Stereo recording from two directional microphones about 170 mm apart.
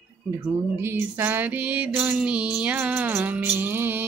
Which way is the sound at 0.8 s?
15° right (ahead or behind).